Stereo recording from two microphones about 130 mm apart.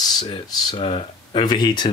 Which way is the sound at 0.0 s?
30° left (ahead or behind).